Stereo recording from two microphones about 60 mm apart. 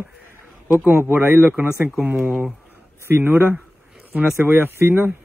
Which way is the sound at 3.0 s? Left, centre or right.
Right.